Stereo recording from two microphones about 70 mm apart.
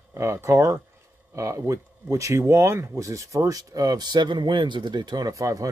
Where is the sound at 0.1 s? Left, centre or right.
Right.